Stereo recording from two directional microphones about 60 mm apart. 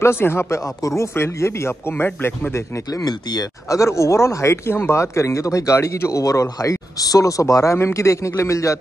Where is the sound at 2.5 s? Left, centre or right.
Left.